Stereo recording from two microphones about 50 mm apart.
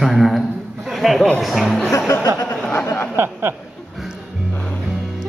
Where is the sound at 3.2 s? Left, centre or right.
Right.